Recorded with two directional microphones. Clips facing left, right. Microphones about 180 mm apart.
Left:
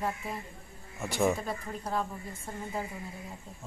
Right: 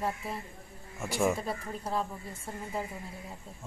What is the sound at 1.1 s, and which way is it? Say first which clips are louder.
Speech: left 1 dB; 5° right (ahead or behind).